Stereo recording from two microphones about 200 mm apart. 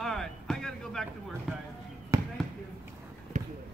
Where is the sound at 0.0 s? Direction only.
Centre (ahead or behind).